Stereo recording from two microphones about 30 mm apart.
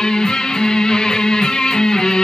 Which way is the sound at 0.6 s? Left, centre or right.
Left.